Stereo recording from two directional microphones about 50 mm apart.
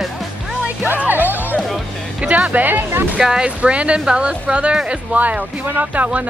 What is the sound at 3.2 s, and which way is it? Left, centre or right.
Speech, centre.